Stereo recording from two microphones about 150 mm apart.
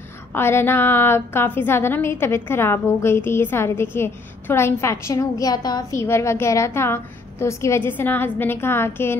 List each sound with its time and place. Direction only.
0.3 s a woman's voice: 15° left (ahead or behind)